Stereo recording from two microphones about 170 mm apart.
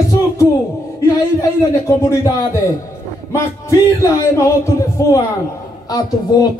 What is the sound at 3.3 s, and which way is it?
Music, 15° left (ahead or behind).